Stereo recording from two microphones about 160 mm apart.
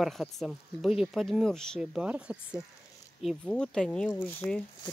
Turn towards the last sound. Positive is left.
turn(degrees=10)  # may be behind; listen again after turning